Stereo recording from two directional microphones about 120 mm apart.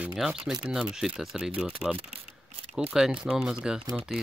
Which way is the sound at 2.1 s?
70° right (ahead or behind).